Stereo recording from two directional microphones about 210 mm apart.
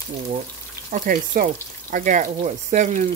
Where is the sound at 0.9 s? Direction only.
40° right (ahead or behind).